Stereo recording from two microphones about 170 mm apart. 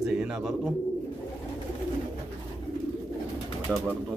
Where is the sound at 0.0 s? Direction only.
5° right (ahead or behind).